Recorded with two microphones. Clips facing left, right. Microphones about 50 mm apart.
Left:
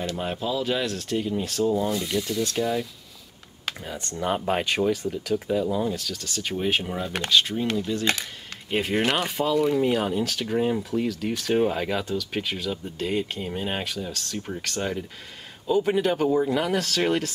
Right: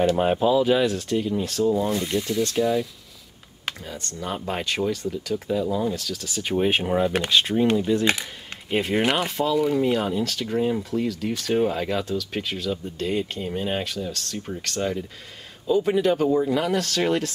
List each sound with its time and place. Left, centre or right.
0.2 s speech: right; by 2.9 s centre
3.8 s speech: centre
6.6 s speech: centre
8.6 s speech: centre